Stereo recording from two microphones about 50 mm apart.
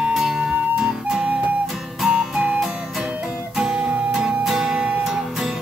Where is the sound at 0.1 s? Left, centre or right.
Centre.